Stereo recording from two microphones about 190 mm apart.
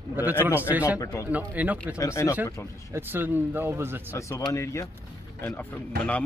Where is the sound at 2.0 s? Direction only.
15° left (ahead or behind).